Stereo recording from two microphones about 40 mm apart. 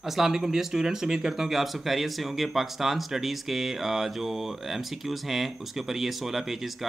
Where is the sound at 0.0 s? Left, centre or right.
Centre.